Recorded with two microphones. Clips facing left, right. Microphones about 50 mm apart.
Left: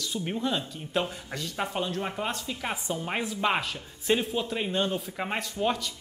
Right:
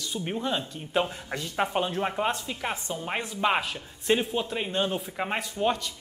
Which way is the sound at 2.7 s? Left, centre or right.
Centre.